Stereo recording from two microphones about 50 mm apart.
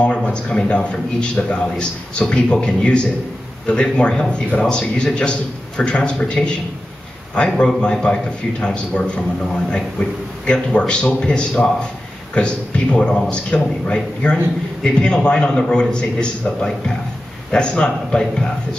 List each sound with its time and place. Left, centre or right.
0.0 s a man's voice: left